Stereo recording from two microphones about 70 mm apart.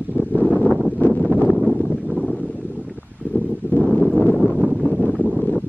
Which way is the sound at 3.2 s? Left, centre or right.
Centre.